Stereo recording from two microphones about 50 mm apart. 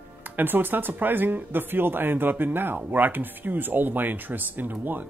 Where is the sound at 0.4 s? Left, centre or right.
Right.